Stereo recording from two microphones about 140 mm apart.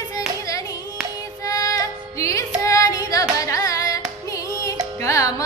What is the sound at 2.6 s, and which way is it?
Carnatic music, 25° left (ahead or behind).